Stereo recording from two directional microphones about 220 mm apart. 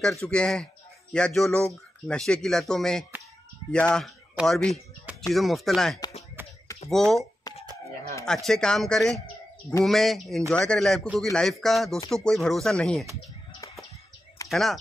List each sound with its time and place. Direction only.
0.0 s speech: 5° left (ahead or behind)
6.4 s a sound: 10° right (ahead or behind)
7.0 s speech: centre (ahead or behind)
7.5 s a sound: 20° left (ahead or behind)
8.5 s speech: 5° left (ahead or behind)
14.5 s speech: centre (ahead or behind)